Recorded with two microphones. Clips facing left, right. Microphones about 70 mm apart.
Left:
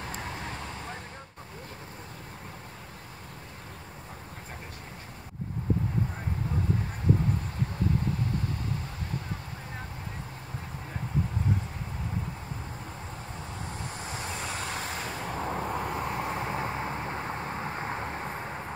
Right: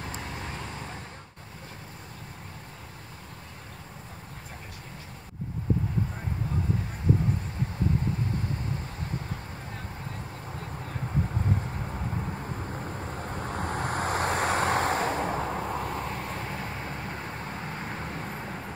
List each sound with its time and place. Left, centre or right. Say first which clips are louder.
13.2 s vehicle: right 7 dB; right
15.4 s vehicle: even; centre
16.2 s vehicle: left 3 dB; left